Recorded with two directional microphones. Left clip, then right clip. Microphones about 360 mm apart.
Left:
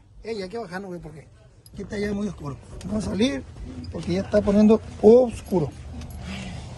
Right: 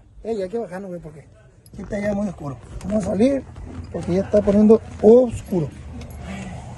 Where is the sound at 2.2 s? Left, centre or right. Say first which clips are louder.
Right 5 dB; centre.